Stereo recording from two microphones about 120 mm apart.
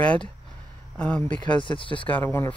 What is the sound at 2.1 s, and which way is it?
Speech, 20° left (ahead or behind).